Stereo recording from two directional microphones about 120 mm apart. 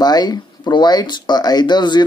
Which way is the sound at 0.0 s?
35° left (ahead or behind).